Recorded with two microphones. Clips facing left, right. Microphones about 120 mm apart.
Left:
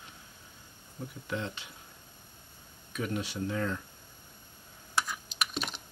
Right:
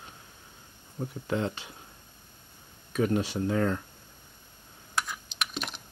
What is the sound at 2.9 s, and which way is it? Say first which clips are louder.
Speech: right 8 dB; 40° right (ahead or behind).